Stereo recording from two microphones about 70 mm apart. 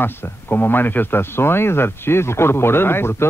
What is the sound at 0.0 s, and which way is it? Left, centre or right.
Speech, left.